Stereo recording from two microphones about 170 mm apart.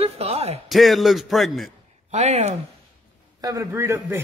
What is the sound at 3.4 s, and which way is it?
Speech, 20° right (ahead or behind).